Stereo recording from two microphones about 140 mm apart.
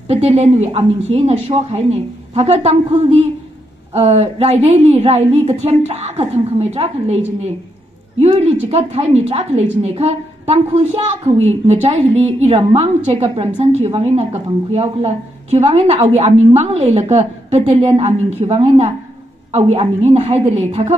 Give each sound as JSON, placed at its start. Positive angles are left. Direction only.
{"t": 0.1, "sound": "a woman's voice", "side_deg": -50}